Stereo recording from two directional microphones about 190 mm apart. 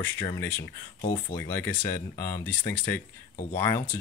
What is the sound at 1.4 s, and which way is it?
Speech, 15° left (ahead or behind).